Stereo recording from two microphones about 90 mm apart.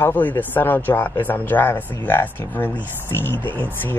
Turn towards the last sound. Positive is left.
turn(degrees=20)  # may be behind; listen again after turning